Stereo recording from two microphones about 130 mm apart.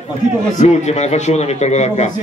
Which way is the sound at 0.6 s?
60° left (ahead or behind).